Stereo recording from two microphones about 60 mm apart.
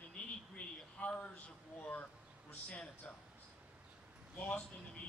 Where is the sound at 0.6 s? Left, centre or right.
Left.